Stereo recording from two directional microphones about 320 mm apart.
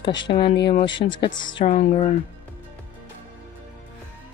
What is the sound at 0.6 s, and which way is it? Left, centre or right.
Speech, left.